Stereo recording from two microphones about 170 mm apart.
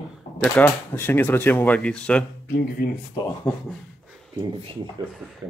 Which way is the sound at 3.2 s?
25° left (ahead or behind).